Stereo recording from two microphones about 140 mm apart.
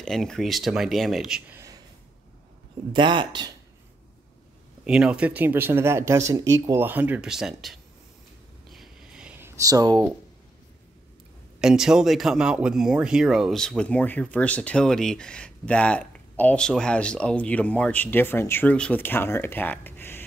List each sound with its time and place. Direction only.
0.0 s speech: 5° left (ahead or behind)
1.5 s a sound: 20° right (ahead or behind)
2.9 s speech: 35° right (ahead or behind)
4.8 s speech: 5° right (ahead or behind)
8.6 s a sound: centre (ahead or behind)
9.4 s speech: 25° right (ahead or behind)
11.6 s speech: 5° right (ahead or behind); by 20.2 s 15° left (ahead or behind)